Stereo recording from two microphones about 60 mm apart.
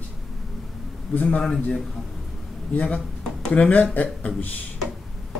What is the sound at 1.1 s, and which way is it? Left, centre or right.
Speech, left.